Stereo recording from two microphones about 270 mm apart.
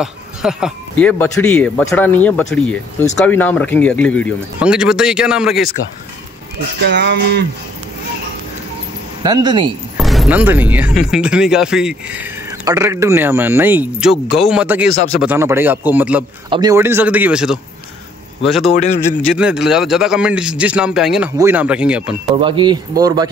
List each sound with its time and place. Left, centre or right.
0.0 s speech: centre
6.8 s speech: right
9.2 s a man's voice: centre
9.9 s a man's voice: centre
22.3 s a man's voice: centre